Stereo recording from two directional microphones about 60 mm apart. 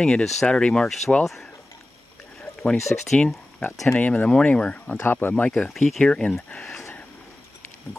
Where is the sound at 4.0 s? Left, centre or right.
Left.